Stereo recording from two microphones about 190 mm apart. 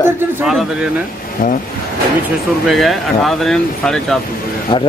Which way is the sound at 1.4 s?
50° left (ahead or behind).